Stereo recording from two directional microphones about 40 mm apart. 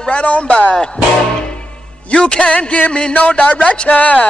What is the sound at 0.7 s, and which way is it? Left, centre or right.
Music, centre.